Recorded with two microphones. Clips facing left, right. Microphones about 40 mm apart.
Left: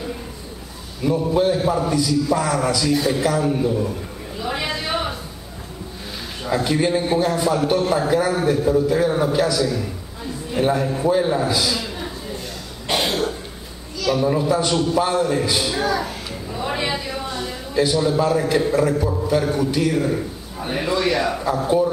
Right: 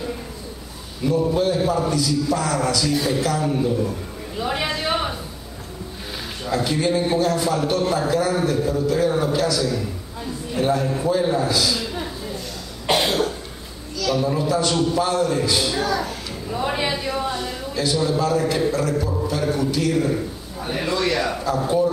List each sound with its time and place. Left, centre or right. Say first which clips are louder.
1.0 s a man's voice: left 1 dB; centre
4.4 s a sound: right 1 dB; centre
6.4 s a man's voice: left 2 dB; centre
12.9 s cough: right 1 dB; centre
13.9 s a man's voice: left 2 dB; centre
16.4 s a sound: right 1 dB; centre
17.8 s a man's voice: left 3 dB; centre